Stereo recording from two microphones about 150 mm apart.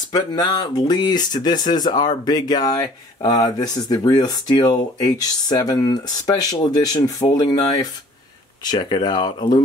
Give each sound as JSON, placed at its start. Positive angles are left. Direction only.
{"t": 0.1, "sound": "speech", "side_deg": 30}